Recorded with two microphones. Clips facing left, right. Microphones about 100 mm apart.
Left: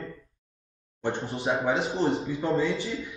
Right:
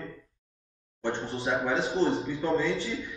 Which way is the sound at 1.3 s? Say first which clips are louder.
Left 2 dB; centre (ahead or behind).